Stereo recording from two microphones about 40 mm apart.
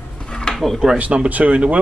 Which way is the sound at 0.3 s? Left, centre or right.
Centre.